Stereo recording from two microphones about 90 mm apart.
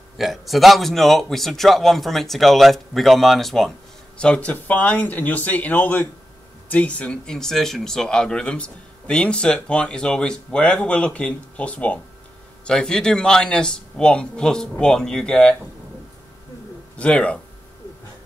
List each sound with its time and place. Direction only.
0.2 s a man's voice: centre (ahead or behind)
4.2 s speech: 15° left (ahead or behind)
16.9 s speech: 15° left (ahead or behind)